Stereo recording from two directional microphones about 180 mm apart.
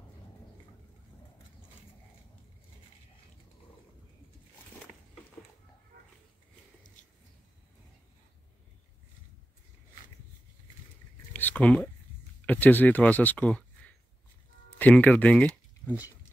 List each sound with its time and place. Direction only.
11.3 s a sound: 10° left (ahead or behind)
12.4 s speech: 10° left (ahead or behind)
15.9 s speech: 10° right (ahead or behind)